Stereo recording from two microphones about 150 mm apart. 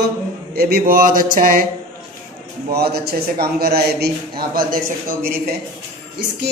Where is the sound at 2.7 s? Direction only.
90° right.